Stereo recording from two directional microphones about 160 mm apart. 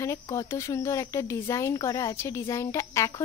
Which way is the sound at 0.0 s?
20° left (ahead or behind).